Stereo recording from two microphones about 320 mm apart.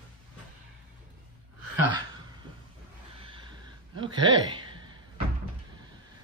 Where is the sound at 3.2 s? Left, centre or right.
Centre.